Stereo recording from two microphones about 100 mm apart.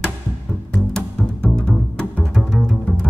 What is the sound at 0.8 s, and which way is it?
Music, 5° left (ahead or behind).